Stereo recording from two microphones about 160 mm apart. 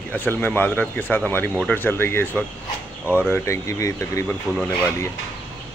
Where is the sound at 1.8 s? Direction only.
15° left (ahead or behind).